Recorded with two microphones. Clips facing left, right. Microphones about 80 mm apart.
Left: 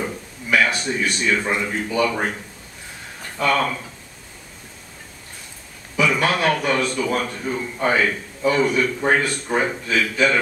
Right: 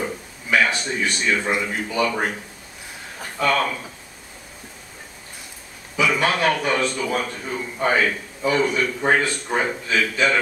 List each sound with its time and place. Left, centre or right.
0.7 s a man's voice: centre
3.3 s a man's voice: centre
5.9 s a man's voice: centre
7.1 s a man's voice: centre